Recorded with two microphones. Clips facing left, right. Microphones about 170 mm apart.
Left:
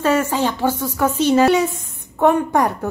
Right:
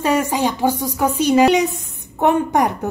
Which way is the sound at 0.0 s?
15° right (ahead or behind).